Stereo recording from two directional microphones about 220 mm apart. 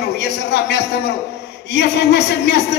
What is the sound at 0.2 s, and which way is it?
Speech, 50° left (ahead or behind).